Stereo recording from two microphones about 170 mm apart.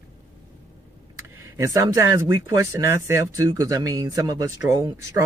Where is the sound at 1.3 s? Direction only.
15° right (ahead or behind).